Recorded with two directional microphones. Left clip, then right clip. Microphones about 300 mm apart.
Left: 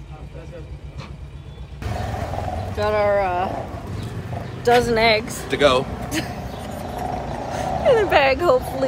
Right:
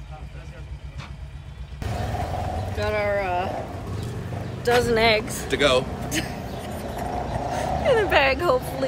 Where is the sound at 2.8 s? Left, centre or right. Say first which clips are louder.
Left 6 dB; centre.